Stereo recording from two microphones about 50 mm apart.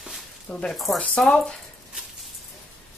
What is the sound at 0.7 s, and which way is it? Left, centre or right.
Speech, centre.